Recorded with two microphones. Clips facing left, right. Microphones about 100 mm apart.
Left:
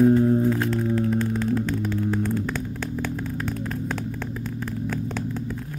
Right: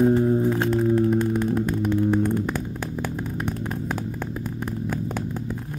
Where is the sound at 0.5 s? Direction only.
20° right (ahead or behind).